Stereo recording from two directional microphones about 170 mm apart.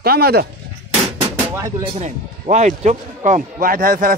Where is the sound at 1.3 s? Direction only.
15° right (ahead or behind).